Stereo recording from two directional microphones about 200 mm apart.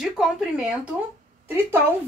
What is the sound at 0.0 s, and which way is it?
A woman's voice, centre (ahead or behind).